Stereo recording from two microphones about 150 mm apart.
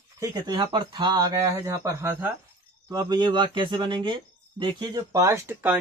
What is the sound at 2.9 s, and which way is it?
Speech, 25° right (ahead or behind).